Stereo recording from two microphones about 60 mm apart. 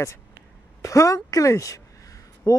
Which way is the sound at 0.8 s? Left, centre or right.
Left.